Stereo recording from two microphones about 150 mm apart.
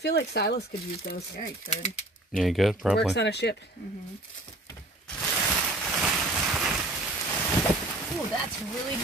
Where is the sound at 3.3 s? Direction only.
90° left.